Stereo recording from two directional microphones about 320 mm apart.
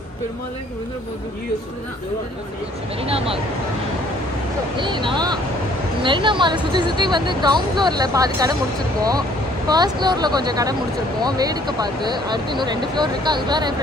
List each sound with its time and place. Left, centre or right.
3.0 s speech: centre
4.7 s speech: centre
9.7 s speech: centre